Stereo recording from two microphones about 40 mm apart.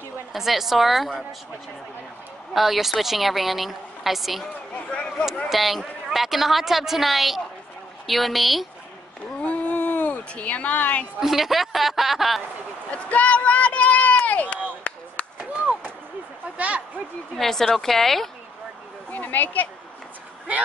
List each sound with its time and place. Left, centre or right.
0.3 s speech: centre
2.5 s speech: centre
4.7 s a sound: left
5.5 s speech: centre
9.4 s a sound: left
10.3 s speech: left
11.1 s speech: centre
12.9 s speech: left
14.8 s chop: left
16.5 s speech: right
17.4 s speech: centre
19.0 s speech: left